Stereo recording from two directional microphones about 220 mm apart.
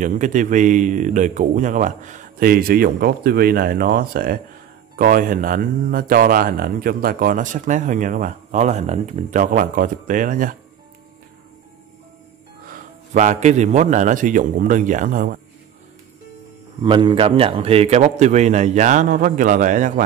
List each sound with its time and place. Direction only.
0.0 s speech: 35° right (ahead or behind)
12.6 s speech: 35° right (ahead or behind)
16.8 s speech: 20° right (ahead or behind)